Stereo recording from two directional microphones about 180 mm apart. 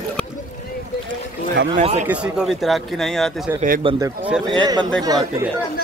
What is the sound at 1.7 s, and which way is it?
Speech, 35° right (ahead or behind).